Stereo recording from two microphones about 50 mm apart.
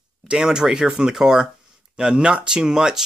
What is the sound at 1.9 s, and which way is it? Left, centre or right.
Speech, centre.